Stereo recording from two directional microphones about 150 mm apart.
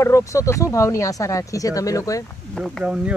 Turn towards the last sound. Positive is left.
turn(degrees=-10)  # may be behind; listen again after turning